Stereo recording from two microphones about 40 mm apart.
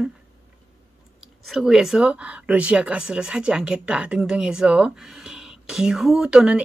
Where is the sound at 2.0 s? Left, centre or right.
Right.